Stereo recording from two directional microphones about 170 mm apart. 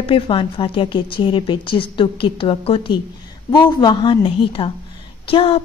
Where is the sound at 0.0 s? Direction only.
30° left (ahead or behind).